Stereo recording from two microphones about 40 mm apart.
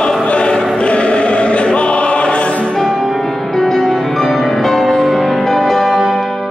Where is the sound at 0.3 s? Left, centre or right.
Left.